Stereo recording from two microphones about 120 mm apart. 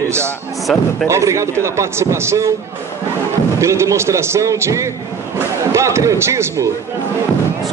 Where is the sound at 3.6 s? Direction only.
25° right (ahead or behind).